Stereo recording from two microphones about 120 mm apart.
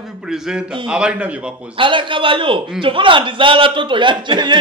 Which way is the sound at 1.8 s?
45° right (ahead or behind).